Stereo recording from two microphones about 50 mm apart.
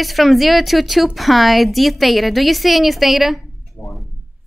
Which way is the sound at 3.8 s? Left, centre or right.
Centre.